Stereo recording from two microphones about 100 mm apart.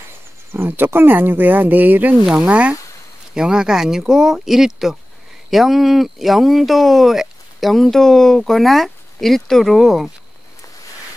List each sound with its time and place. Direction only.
0.5 s speech: 20° right (ahead or behind); by 10.1 s centre (ahead or behind)